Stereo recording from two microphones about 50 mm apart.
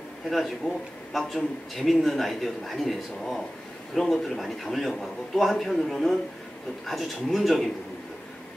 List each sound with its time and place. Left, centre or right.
0.6 s a man's voice: left
1.1 s a man's voice: centre